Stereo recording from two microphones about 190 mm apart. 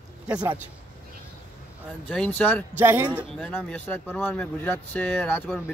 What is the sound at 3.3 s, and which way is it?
Speech, 5° left (ahead or behind).